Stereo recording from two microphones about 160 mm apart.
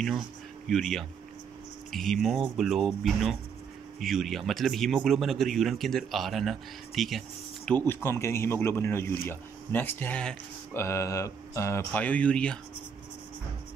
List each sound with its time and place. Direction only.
0.7 s speech: centre (ahead or behind)
7.8 s speech: 15° left (ahead or behind)